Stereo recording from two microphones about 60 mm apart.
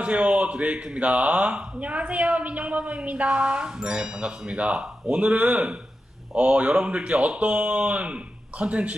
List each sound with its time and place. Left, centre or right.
0.0 s speech: right